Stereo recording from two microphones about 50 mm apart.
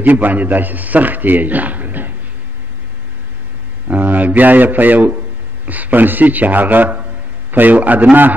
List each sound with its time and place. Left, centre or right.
0.0 s a man's voice: right
3.8 s a man's voice: right